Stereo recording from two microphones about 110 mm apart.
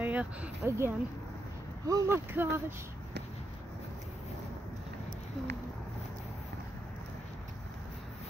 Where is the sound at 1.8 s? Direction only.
25° right (ahead or behind).